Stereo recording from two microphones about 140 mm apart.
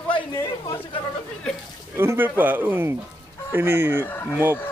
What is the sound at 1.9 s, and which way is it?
Speech, 20° right (ahead or behind).